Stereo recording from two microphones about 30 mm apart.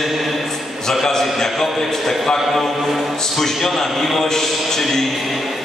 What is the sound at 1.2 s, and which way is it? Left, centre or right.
A man's voice, centre.